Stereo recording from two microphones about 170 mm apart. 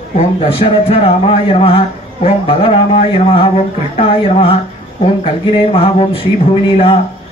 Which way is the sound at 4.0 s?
35° left (ahead or behind).